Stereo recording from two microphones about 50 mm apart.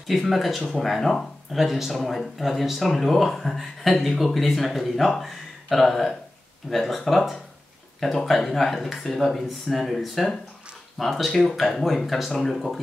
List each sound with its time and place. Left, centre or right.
0.1 s speech: centre